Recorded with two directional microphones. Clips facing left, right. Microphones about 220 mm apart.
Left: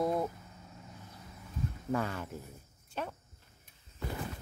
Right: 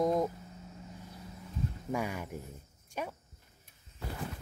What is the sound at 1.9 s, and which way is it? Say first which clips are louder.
Speech: left 2 dB; 10° right (ahead or behind).